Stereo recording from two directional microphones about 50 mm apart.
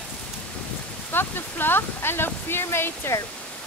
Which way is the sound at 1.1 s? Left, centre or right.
Left.